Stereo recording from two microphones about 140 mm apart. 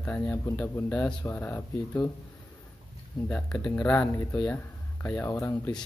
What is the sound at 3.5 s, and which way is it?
Speech, 10° left (ahead or behind).